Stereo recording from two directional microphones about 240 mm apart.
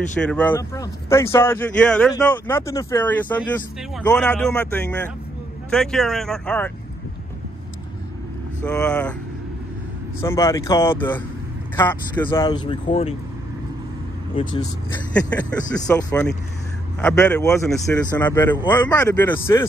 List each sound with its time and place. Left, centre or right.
0.3 s speech: centre
8.6 s speech: centre
10.2 s speech: centre
14.3 s speech: centre